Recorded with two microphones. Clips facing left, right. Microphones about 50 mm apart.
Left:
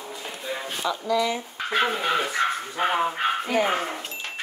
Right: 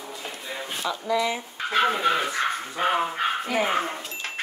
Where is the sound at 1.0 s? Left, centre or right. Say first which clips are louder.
Even; centre.